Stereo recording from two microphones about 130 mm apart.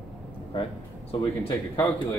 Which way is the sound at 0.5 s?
45° left (ahead or behind).